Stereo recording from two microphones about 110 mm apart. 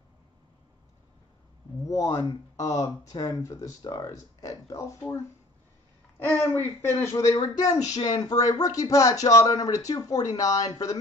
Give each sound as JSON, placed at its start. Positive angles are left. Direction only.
{"t": 1.9, "sound": "speech", "side_deg": 30}
{"t": 6.4, "sound": "speech", "side_deg": 20}